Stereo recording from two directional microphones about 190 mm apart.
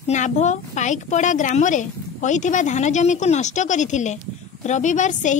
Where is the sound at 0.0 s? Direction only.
40° left (ahead or behind).